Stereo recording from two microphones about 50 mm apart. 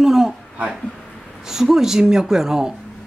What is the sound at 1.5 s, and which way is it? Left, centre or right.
A woman's voice, centre.